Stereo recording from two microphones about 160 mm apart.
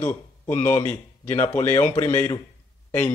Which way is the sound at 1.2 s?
15° left (ahead or behind).